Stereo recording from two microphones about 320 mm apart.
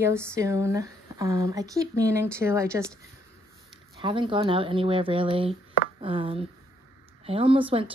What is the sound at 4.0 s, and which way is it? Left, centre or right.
Speech, centre.